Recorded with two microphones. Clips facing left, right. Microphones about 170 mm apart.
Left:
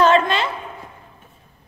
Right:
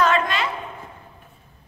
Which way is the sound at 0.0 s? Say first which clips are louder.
Left 5 dB; 30° left (ahead or behind).